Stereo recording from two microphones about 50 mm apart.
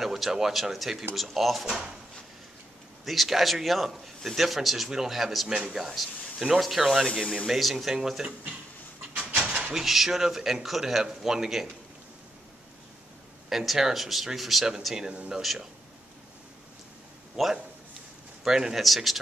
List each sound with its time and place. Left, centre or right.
0.0 s speech: centre
3.1 s speech: centre
7.1 s speech: centre
7.4 s speech: centre
9.2 s a sound: right
9.7 s speech: centre
13.5 s speech: centre
15.0 s speech: centre
17.4 s a man's voice: centre